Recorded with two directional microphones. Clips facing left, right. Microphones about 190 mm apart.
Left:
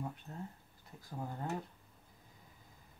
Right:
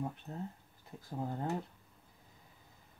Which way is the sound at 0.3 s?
15° right (ahead or behind).